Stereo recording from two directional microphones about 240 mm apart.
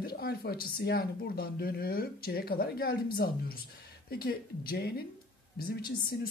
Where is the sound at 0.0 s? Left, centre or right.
Left.